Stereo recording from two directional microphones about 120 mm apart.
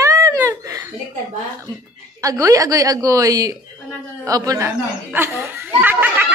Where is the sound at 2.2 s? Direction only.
25° right (ahead or behind).